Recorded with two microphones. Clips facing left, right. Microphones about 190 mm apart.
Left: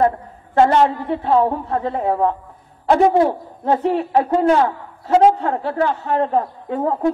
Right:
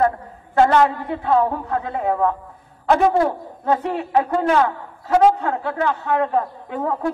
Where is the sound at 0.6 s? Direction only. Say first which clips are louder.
Left 1 dB; 30° left (ahead or behind).